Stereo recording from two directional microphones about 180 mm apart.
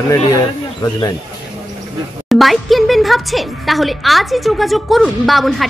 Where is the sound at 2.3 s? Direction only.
Centre (ahead or behind).